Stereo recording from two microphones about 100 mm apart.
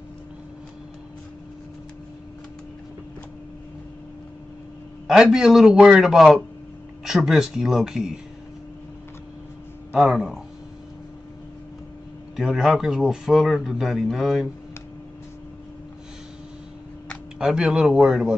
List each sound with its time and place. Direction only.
5.0 s speech: 5° right (ahead or behind)
9.9 s speech: centre (ahead or behind)
12.4 s speech: centre (ahead or behind)
17.4 s speech: 5° right (ahead or behind)